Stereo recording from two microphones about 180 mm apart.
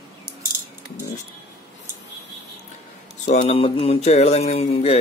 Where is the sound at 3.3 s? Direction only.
35° left (ahead or behind).